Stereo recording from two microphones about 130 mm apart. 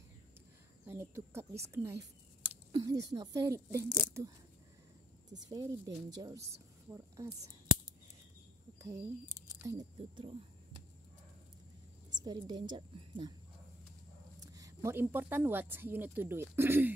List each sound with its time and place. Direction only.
0.8 s a woman's voice: 20° right (ahead or behind)
5.5 s a woman's voice: 25° right (ahead or behind)
8.7 s speech: 25° right (ahead or behind)
9.9 s speech: 40° right (ahead or behind)
12.1 s a woman's voice: 30° right (ahead or behind)
14.4 s a woman's voice: 25° right (ahead or behind)